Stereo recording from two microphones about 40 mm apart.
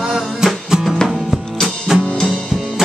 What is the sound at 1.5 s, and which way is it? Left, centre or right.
Music, centre.